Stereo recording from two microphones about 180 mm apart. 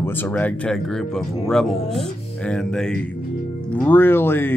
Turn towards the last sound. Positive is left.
turn(degrees=10)  # may be behind; listen again after turning